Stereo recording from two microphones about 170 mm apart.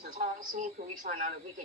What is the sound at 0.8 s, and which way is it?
Speech, 55° right (ahead or behind).